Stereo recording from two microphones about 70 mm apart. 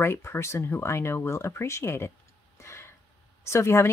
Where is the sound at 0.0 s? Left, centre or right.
Left.